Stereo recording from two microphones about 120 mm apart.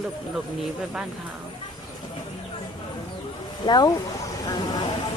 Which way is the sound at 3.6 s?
35° left (ahead or behind).